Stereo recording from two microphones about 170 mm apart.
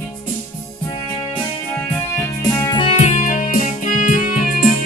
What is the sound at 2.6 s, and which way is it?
Music, 25° left (ahead or behind).